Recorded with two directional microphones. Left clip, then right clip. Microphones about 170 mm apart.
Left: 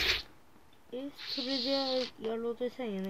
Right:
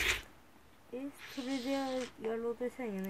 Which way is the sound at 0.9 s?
5° left (ahead or behind).